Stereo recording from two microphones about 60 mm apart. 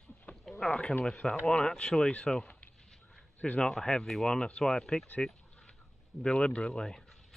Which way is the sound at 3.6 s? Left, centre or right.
Centre.